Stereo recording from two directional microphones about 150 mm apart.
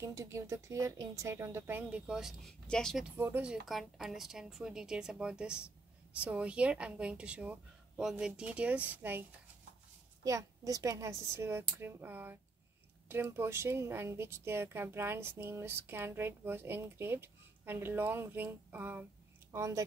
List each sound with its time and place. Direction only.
0.0 s a woman's voice: 20° right (ahead or behind); by 3.1 s 5° left (ahead or behind)
3.2 s a woman's voice: 15° right (ahead or behind)
3.6 s a woman's voice: centre (ahead or behind)
10.2 s a woman's voice: 20° right (ahead or behind)